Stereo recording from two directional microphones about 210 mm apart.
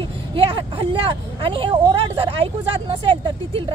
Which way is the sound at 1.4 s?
25° right (ahead or behind).